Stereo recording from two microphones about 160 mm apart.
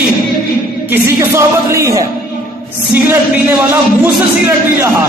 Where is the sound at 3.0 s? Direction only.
15° right (ahead or behind).